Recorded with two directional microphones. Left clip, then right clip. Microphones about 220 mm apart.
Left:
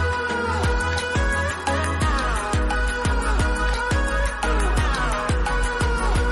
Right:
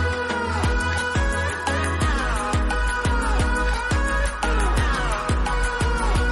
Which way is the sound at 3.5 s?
Centre (ahead or behind).